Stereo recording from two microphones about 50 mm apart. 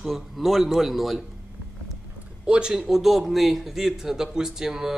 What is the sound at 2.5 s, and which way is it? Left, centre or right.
Speech, centre.